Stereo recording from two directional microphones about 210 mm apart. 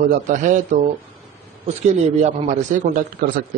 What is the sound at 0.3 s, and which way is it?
A man's voice, 35° right (ahead or behind).